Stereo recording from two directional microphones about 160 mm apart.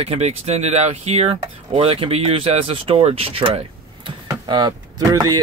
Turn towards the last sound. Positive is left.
turn(degrees=-25)  # may be behind; listen again after turning